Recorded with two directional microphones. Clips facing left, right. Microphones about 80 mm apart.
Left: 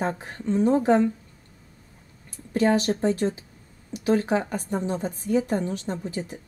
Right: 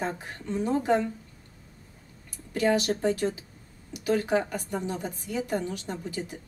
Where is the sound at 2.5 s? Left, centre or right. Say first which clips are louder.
Left 3 dB; left.